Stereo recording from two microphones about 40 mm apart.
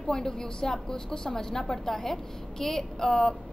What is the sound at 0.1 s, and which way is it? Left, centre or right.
A woman's voice, centre.